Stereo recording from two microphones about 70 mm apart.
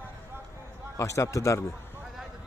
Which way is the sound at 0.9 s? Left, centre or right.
Left.